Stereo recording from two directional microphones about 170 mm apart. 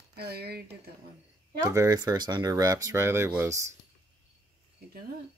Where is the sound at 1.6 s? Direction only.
20° right (ahead or behind).